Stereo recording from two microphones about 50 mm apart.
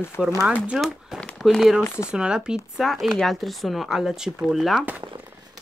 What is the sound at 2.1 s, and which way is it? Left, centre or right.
Speech, centre.